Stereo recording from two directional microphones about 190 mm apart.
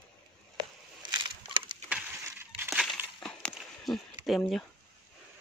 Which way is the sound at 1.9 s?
10° right (ahead or behind).